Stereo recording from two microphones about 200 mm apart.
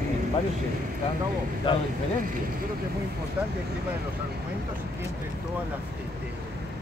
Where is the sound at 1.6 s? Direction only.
25° left (ahead or behind).